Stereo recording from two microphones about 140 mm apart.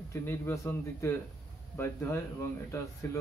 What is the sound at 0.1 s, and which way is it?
A man's voice, 15° left (ahead or behind).